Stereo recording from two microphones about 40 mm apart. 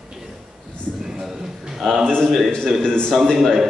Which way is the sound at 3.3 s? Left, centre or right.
Centre.